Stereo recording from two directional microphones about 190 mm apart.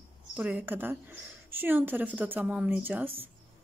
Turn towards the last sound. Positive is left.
turn(degrees=-10)  # may be behind; listen again after turning